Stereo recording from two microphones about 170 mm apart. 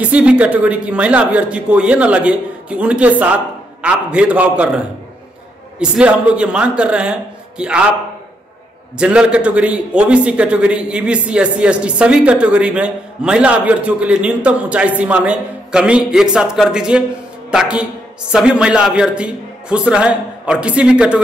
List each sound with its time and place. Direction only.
0.0 s a man's voice: 5° right (ahead or behind)
8.9 s a man's voice: 5° right (ahead or behind)